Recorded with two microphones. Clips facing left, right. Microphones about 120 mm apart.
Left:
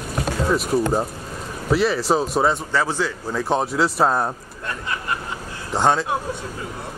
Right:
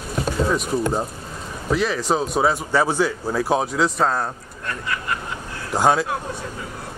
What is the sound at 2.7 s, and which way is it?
Speech, 15° right (ahead or behind).